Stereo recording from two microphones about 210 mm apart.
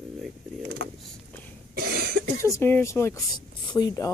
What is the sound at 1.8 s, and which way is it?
Cough, 45° right (ahead or behind).